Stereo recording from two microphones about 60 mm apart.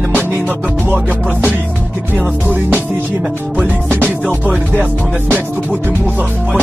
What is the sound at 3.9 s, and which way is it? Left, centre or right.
Music, right.